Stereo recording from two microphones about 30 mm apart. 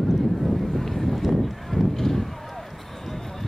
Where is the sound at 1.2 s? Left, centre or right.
Centre.